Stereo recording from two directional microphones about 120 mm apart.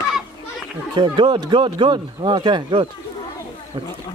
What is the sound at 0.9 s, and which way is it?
Speech, 40° right (ahead or behind).